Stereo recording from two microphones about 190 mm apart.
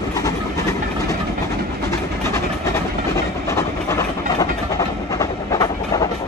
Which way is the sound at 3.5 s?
15° left (ahead or behind).